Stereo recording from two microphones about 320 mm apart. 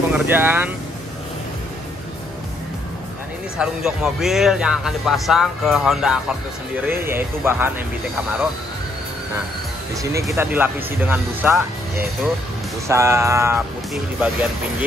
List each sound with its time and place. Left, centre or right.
0.1 s speech: centre
3.5 s a man's voice: centre
10.1 s a man's voice: centre